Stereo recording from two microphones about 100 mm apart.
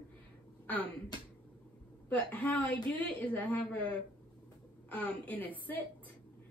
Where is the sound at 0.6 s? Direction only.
15° left (ahead or behind).